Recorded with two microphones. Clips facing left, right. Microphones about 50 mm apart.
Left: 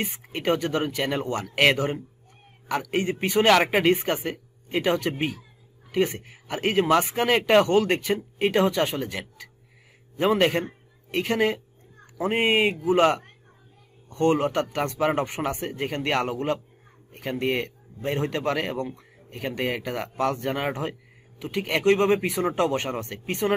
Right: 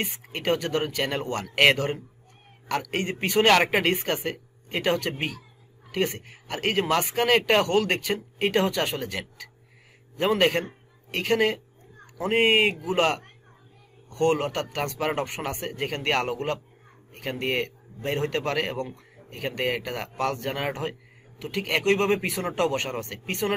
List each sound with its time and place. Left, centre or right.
0.2 s speech: centre
2.7 s speech: centre
3.4 s a man's voice: centre
12.8 s speech: centre